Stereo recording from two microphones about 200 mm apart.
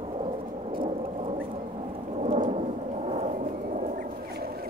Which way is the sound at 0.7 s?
30° right (ahead or behind).